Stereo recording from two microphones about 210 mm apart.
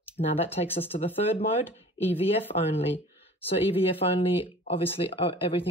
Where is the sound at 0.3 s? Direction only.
30° left (ahead or behind).